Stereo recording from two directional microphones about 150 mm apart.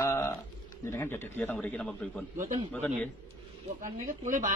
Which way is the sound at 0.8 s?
15° left (ahead or behind).